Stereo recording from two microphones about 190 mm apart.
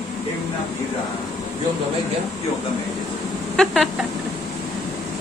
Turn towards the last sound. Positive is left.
turn(degrees=0)  # may be behind; listen again after turning